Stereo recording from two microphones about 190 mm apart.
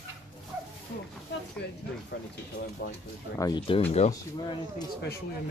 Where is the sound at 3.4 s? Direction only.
20° left (ahead or behind).